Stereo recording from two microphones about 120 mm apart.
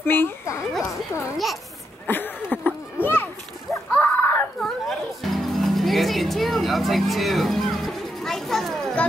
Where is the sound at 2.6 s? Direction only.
15° left (ahead or behind).